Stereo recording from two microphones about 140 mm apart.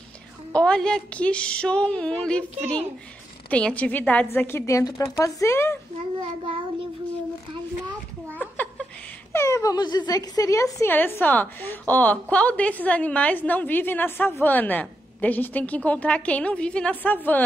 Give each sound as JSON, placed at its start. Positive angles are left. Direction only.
{"t": 0.5, "sound": "a woman's voice", "side_deg": 5}
{"t": 3.4, "sound": "a woman's voice", "side_deg": 10}
{"t": 6.1, "sound": "child singing", "side_deg": -35}
{"t": 8.3, "sound": "a sound", "side_deg": 10}
{"t": 9.3, "sound": "a woman's voice", "side_deg": 20}